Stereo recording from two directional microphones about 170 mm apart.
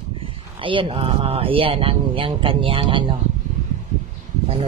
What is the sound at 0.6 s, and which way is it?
Speech, 30° right (ahead or behind).